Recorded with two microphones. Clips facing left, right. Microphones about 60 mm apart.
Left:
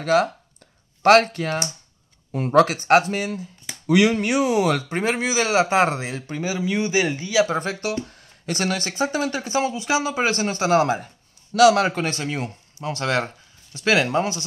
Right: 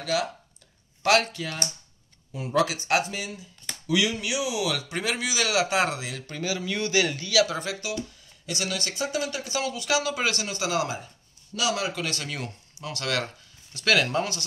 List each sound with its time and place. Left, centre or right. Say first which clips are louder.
0.0 s speech: left 8 dB; left
6.2 s speech: left 4 dB; left
7.4 s speech: left 6 dB; left
11.5 s a man's voice: left 13 dB; left
11.8 s speech: left 8 dB; left
12.1 s speech: left 6 dB; left